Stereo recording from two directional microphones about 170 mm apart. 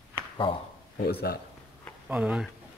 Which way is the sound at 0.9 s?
65° left (ahead or behind).